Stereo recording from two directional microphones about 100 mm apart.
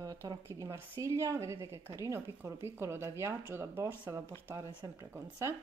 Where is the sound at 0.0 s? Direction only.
35° right (ahead or behind).